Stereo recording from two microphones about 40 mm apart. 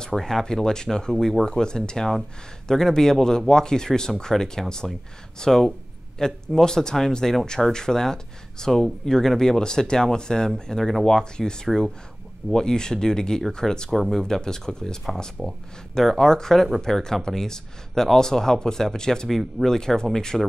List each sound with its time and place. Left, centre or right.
0.0 s speech: centre